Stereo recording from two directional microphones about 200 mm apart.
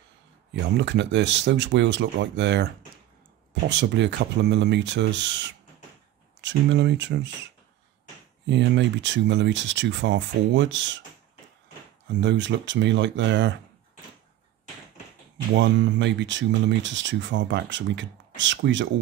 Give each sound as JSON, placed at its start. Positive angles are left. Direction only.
{"t": 0.5, "sound": "speech", "side_deg": -60}
{"t": 8.5, "sound": "speech", "side_deg": -65}
{"t": 12.1, "sound": "speech", "side_deg": -65}
{"t": 15.5, "sound": "speech", "side_deg": -65}